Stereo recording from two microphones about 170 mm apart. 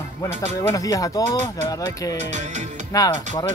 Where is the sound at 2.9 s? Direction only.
20° left (ahead or behind).